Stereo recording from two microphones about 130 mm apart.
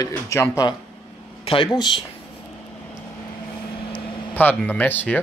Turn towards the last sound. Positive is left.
turn(degrees=15)  # may be behind; listen again after turning